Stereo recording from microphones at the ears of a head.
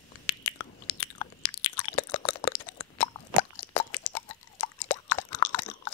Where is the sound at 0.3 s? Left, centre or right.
Left.